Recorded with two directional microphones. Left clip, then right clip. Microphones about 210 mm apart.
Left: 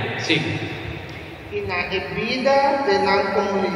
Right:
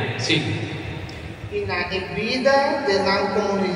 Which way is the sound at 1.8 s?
45° right (ahead or behind).